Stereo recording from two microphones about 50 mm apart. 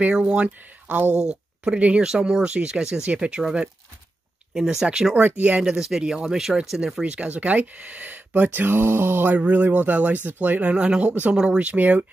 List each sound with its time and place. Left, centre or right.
0.1 s speech: centre
4.6 s speech: centre
5.1 s speech: right
5.6 s speech: centre
7.0 s speech: right
9.3 s speech: right
11.1 s speech: right
11.3 s speech: centre